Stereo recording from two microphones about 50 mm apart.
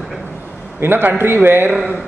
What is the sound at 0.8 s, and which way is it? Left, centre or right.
Speech, right.